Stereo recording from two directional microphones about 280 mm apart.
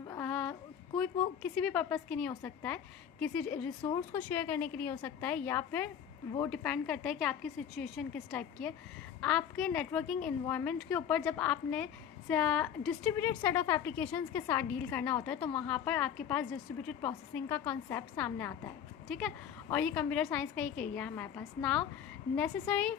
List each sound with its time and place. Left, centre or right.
0.0 s a woman's voice: centre